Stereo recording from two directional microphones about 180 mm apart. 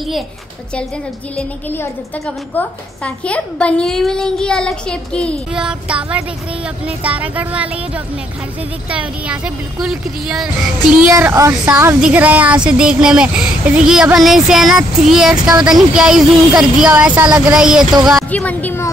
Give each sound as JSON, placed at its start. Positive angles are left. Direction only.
{"t": 1.3, "sound": "a woman's voice", "side_deg": 10}
{"t": 5.6, "sound": "a woman's voice", "side_deg": -5}
{"t": 7.0, "sound": "music", "side_deg": -10}
{"t": 8.9, "sound": "a woman's voice", "side_deg": -5}
{"t": 11.1, "sound": "music", "side_deg": -15}
{"t": 12.6, "sound": "a woman's voice", "side_deg": -5}